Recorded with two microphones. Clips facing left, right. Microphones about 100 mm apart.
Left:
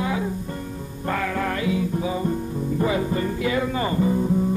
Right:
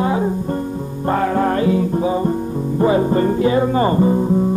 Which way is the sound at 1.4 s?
40° right (ahead or behind).